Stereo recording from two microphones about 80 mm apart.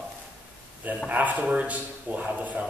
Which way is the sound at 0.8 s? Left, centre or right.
Centre.